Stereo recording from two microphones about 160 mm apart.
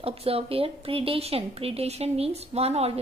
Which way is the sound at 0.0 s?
35° right (ahead or behind).